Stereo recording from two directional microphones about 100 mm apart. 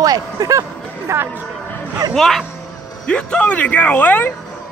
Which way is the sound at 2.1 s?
5° left (ahead or behind).